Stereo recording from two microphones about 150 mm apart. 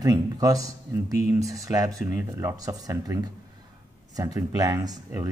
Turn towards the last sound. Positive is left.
turn(degrees=-20)  # may be behind; listen again after turning